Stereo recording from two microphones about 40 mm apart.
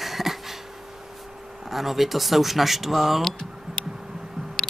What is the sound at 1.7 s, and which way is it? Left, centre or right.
Speech, centre.